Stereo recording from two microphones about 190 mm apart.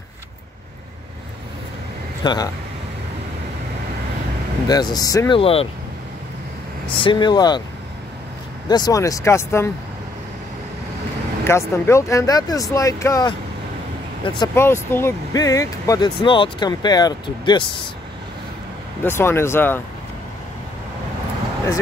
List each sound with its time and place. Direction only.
2.2 s speech: 20° left (ahead or behind)
4.6 s speech: 20° left (ahead or behind)
5.4 s speech: 30° left (ahead or behind)
6.9 s speech: 25° left (ahead or behind)
8.6 s speech: 20° left (ahead or behind)
11.4 s speech: 15° left (ahead or behind)
14.5 s speech: 10° left (ahead or behind)
19.0 s speech: 15° left (ahead or behind)